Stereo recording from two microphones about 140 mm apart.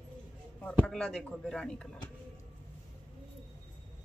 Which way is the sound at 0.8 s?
5° left (ahead or behind).